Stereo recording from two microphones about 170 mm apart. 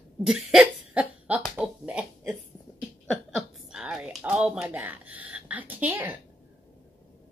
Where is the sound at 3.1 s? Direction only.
Centre (ahead or behind).